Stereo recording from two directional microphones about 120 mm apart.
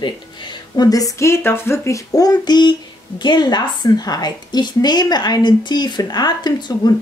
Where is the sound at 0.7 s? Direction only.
30° left (ahead or behind).